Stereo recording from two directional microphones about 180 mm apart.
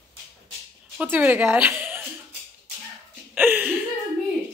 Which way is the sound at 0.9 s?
10° right (ahead or behind).